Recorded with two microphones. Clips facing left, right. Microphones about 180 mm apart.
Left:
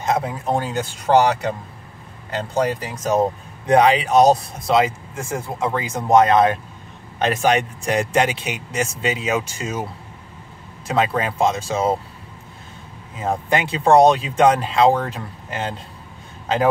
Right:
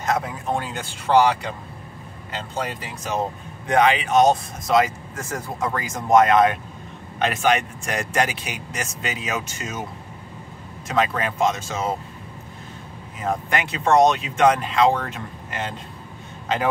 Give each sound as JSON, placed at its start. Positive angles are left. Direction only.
{"t": 0.0, "sound": "speech", "side_deg": 25}
{"t": 2.5, "sound": "speech", "side_deg": 40}
{"t": 10.9, "sound": "speech", "side_deg": 30}
{"t": 13.2, "sound": "speech", "side_deg": 30}